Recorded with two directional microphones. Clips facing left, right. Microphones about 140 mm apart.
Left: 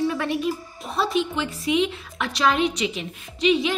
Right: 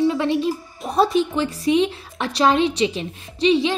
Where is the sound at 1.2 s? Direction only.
40° right (ahead or behind).